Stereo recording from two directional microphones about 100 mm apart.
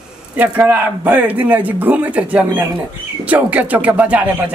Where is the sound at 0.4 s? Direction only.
20° right (ahead or behind).